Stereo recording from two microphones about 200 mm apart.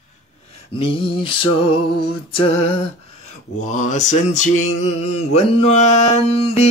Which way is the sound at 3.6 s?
40° left (ahead or behind).